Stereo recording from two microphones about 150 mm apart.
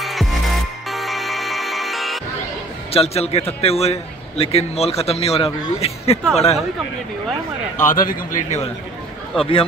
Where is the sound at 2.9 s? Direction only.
45° left (ahead or behind).